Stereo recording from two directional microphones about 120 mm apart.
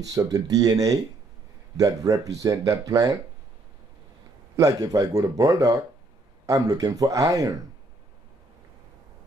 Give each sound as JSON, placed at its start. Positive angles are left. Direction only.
{"t": 0.0, "sound": "speech", "side_deg": -30}
{"t": 4.6, "sound": "speech", "side_deg": -30}